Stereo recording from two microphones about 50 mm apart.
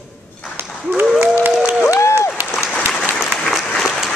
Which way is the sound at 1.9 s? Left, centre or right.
Left.